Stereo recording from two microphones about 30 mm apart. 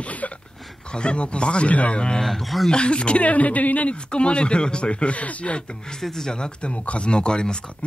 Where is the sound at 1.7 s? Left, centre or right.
Left.